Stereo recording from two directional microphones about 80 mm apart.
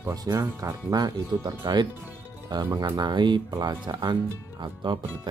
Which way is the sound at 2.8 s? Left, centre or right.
Right.